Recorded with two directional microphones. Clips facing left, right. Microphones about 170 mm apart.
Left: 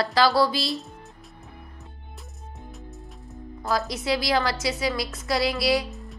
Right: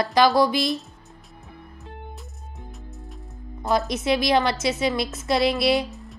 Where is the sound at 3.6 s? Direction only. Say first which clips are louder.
Right 4 dB; 20° right (ahead or behind).